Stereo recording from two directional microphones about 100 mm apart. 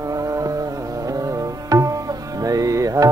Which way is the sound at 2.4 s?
35° right (ahead or behind).